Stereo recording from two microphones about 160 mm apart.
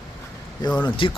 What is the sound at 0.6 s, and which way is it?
Speech, 10° left (ahead or behind).